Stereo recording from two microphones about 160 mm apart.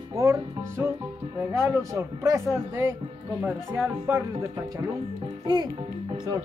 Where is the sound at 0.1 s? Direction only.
20° right (ahead or behind).